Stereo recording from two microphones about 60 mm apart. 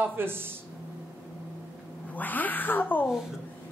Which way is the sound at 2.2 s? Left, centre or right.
Left.